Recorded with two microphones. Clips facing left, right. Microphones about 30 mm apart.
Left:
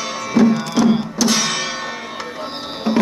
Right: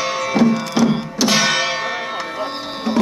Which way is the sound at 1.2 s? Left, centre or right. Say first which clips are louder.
Right 5 dB; centre.